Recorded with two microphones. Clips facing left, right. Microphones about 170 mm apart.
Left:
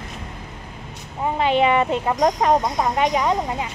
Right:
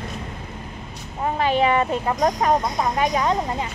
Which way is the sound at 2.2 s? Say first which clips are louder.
Left 2 dB; 25° left (ahead or behind).